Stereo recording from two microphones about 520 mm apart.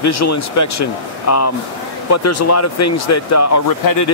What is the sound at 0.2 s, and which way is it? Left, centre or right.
Speech, left.